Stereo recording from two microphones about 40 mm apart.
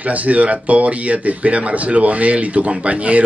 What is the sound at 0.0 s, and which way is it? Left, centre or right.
Speech, right.